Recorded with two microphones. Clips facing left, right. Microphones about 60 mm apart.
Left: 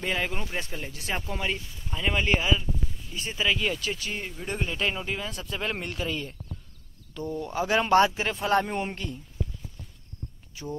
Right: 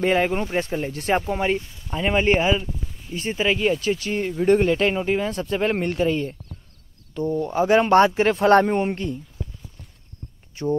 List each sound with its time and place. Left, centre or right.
0.0 s speech: right
1.3 s speech: right
10.5 s speech: right